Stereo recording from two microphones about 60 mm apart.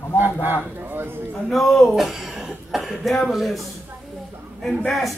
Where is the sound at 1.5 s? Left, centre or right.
Centre.